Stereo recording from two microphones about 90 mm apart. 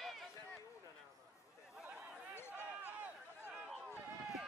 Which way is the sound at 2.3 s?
25° left (ahead or behind).